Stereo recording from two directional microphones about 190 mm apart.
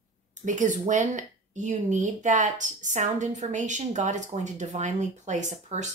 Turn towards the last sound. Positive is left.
turn(degrees=-40)  # may be behind; listen again after turning